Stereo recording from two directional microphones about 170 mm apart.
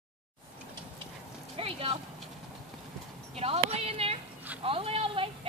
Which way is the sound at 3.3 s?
35° right (ahead or behind).